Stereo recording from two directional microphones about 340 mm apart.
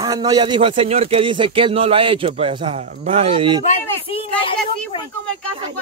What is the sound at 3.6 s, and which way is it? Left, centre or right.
Speech, centre.